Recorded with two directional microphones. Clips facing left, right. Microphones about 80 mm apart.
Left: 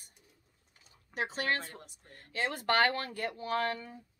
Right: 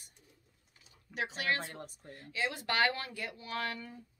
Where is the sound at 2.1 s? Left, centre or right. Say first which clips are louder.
Left 2 dB; left.